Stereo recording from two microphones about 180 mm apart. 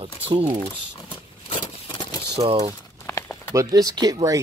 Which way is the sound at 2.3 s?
35° right (ahead or behind).